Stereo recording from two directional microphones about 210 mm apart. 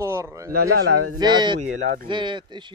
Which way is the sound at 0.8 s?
80° right.